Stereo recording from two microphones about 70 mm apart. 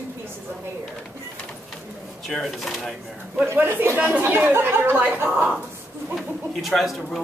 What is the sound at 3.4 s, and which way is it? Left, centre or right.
Speech, right.